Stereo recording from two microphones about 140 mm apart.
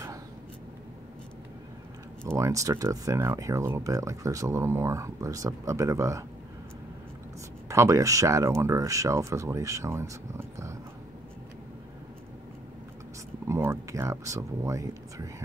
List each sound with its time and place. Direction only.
2.2 s speech: 20° right (ahead or behind)
7.6 s speech: 20° right (ahead or behind)
13.5 s speech: 20° right (ahead or behind)